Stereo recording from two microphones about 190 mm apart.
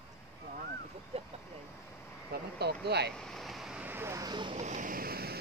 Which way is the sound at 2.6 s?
60° right (ahead or behind).